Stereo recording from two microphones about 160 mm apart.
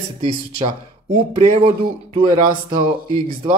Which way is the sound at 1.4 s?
45° right (ahead or behind).